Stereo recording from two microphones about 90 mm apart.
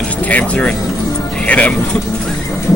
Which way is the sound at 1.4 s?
15° left (ahead or behind).